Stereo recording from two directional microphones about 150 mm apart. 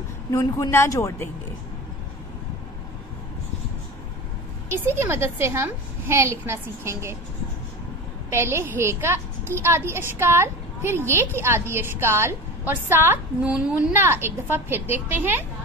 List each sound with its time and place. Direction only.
0.3 s speech: 20° left (ahead or behind)
4.6 s a woman's voice: 15° right (ahead or behind)
8.3 s a woman's voice: 15° right (ahead or behind)